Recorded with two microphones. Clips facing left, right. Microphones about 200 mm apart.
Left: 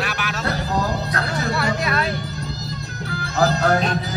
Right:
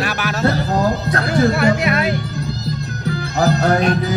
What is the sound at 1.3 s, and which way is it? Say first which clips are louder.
Music: right 10 dB; 25° right (ahead or behind).